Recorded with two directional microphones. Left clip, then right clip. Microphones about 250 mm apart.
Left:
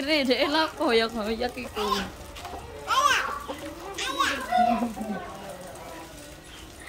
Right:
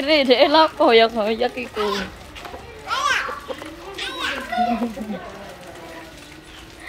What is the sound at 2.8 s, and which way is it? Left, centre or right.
Children playing, left.